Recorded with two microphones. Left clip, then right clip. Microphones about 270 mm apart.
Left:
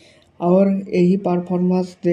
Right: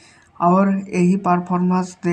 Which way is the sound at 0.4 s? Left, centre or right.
Right.